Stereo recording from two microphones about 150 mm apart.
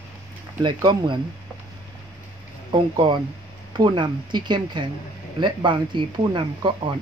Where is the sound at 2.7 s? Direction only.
30° right (ahead or behind).